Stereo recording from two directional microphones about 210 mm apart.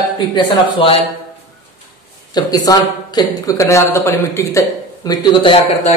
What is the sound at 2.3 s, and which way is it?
Speech, 20° left (ahead or behind).